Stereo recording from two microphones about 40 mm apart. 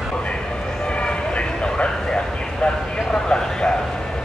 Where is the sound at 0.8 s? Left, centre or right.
Left.